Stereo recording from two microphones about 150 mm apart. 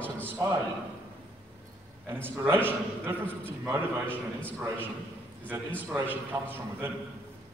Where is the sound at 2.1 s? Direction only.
15° right (ahead or behind).